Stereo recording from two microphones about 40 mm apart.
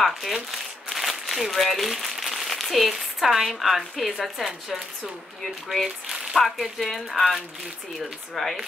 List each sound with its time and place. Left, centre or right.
0.0 s speech: centre
6.3 s speech: centre